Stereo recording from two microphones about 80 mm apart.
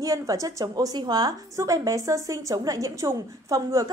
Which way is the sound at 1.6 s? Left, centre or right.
Right.